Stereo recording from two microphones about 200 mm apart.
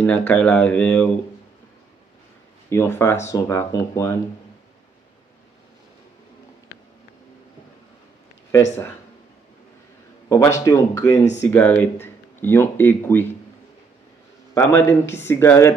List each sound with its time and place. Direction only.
0.0 s speech: 5° left (ahead or behind)
2.7 s speech: 15° left (ahead or behind)
10.2 s speech: 15° left (ahead or behind)
14.5 s speech: 15° left (ahead or behind)